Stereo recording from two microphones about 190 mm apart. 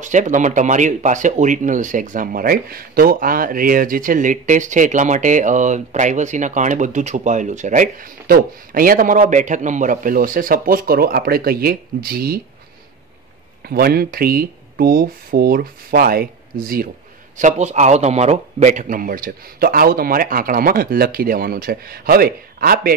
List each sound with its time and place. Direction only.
0.0 s speech: 40° right (ahead or behind)
13.7 s speech: 55° right (ahead or behind)
17.4 s speech: 40° right (ahead or behind)